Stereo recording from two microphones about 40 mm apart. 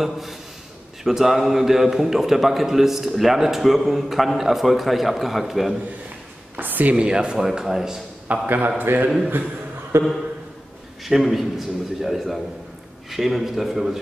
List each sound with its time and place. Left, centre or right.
0.0 s a man's voice: centre
6.5 s a sound: right
7.0 s speech: right
8.3 s a man's voice: right
9.9 s speech: right
11.1 s a man's voice: centre